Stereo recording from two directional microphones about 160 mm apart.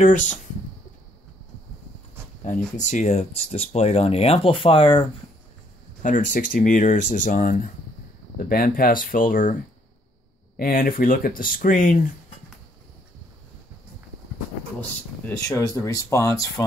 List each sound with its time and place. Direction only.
0.0 s speech: 50° left (ahead or behind)
2.4 s speech: 50° left (ahead or behind); by 5.0 s 35° left (ahead or behind)
6.0 s speech: 55° left (ahead or behind)
10.6 s speech: 65° left (ahead or behind)
15.4 s speech: 25° left (ahead or behind)